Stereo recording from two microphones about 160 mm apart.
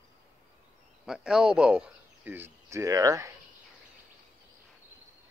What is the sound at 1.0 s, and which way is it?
Speech, 5° right (ahead or behind).